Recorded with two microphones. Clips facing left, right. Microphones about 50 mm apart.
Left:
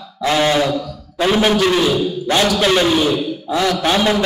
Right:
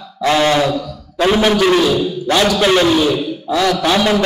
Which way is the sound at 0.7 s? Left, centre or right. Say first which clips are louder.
Right 1 dB; centre.